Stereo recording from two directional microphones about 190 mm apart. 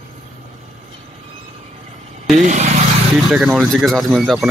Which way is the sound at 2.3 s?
40° right (ahead or behind).